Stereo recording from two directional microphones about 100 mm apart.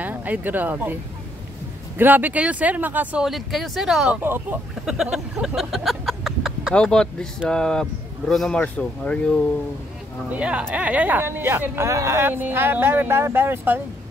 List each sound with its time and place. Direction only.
0.0 s speech: 15° right (ahead or behind)
2.0 s speech: 20° right (ahead or behind)
3.3 s speech: centre (ahead or behind)
4.2 s speech: 20° right (ahead or behind)
4.8 s a sound: 5° right (ahead or behind)
6.7 s speech: 10° left (ahead or behind)
8.5 s speech: 15° left (ahead or behind)
10.3 s speech: 15° right (ahead or behind)